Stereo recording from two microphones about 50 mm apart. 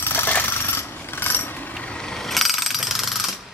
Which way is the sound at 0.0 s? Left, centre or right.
Left.